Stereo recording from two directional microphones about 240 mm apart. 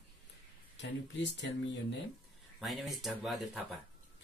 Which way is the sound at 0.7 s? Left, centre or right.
Left.